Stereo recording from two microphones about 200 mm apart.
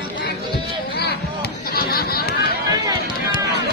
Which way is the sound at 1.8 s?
50° left (ahead or behind).